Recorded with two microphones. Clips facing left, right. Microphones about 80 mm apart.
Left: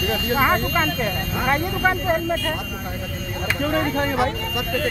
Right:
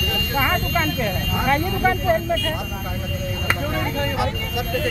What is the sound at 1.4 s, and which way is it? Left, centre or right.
Speech, left.